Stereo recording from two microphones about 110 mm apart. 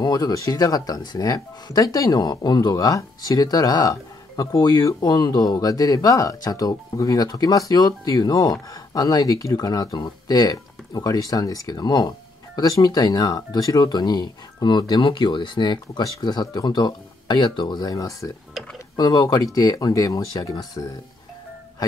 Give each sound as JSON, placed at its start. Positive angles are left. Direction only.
{"t": 0.0, "sound": "speech", "side_deg": 35}